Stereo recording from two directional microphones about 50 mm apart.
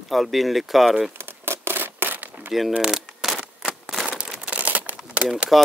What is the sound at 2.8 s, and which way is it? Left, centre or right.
Speech, centre.